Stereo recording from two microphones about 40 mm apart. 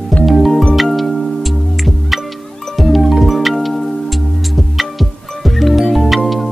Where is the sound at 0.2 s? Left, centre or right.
Centre.